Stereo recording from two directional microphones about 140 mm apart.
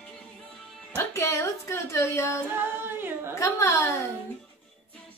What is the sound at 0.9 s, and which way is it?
Speech, 20° left (ahead or behind).